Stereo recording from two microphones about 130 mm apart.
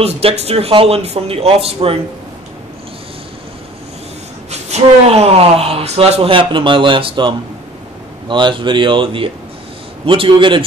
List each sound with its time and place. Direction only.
0.0 s speech: 50° right (ahead or behind)
4.5 s speech: 55° right (ahead or behind); by 10.6 s 40° right (ahead or behind)